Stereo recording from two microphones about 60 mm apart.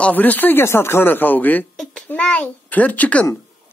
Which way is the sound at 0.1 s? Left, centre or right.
Left.